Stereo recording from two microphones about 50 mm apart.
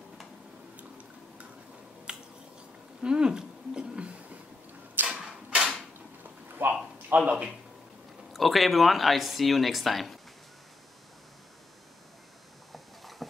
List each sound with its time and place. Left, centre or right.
2.1 s finger snapping: centre
3.0 s a sound: centre
6.6 s a sound: right
7.1 s speech: right
8.3 s speech: centre
12.7 s clip-clop: centre